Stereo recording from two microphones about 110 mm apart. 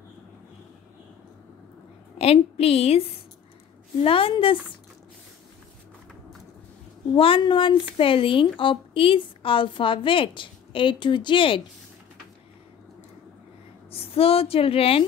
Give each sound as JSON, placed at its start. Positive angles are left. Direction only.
{"t": 2.1, "sound": "a woman's voice", "side_deg": 65}
{"t": 4.0, "sound": "a woman's voice", "side_deg": 55}
{"t": 7.2, "sound": "a woman's voice", "side_deg": 55}
{"t": 13.8, "sound": "speech", "side_deg": 60}